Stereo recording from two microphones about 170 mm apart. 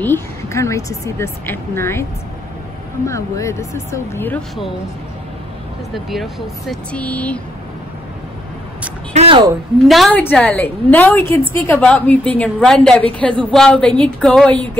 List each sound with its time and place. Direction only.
0.0 s a woman's voice: 15° left (ahead or behind)
3.1 s a woman's voice: 15° left (ahead or behind)
6.0 s speech: centre (ahead or behind)
9.1 s speech: 35° right (ahead or behind)
9.8 s a woman's voice: centre (ahead or behind)